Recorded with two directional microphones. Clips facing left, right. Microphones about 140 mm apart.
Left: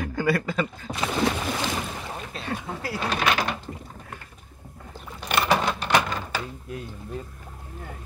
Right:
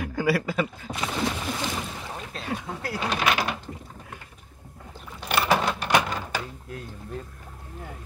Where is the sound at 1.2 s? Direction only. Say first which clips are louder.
Left 3 dB; 85° left.